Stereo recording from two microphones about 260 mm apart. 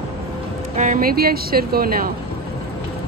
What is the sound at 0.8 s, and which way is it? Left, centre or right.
Speech, right.